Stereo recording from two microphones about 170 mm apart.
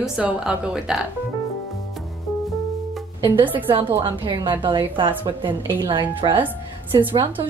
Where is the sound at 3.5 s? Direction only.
30° right (ahead or behind).